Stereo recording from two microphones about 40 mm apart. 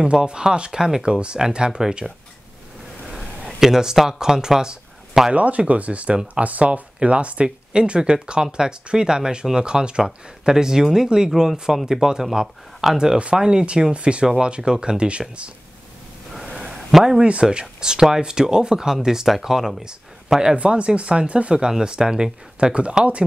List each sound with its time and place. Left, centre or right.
0.0 s speech: right
3.1 s a sound: centre
3.5 s speech: centre
5.3 s speech: right
16.6 s a sound: centre
17.2 s speech: right; by 19.7 s centre
20.5 s speech: right
21.5 s speech: centre